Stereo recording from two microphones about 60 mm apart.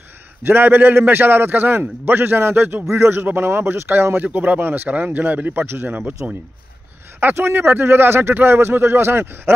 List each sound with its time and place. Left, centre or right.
0.5 s a man's voice: right
4.3 s a man's voice: right
7.2 s speech: right